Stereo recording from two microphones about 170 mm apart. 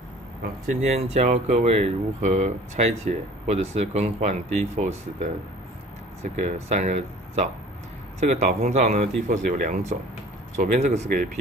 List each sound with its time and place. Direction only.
0.7 s speech: 40° right (ahead or behind)
6.2 s speech: 40° right (ahead or behind)